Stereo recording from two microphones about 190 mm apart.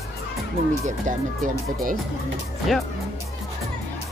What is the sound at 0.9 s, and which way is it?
Speech, 40° right (ahead or behind).